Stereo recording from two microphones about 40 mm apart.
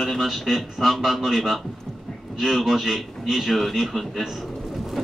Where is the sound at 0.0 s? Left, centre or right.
Centre.